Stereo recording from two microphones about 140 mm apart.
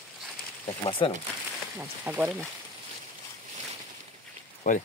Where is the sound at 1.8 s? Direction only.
15° right (ahead or behind).